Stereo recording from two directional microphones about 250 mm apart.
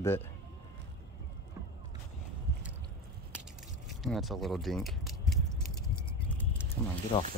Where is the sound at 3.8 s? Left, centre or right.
Centre.